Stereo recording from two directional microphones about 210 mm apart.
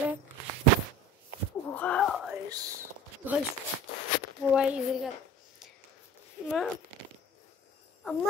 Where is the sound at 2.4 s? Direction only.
15° right (ahead or behind).